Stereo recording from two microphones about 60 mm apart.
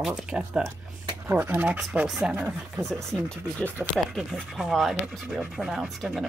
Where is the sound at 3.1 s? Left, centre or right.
Centre.